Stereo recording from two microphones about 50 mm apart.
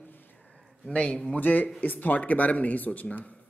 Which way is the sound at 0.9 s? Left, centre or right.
Left.